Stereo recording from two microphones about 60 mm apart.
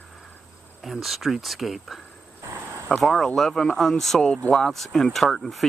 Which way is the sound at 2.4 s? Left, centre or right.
Right.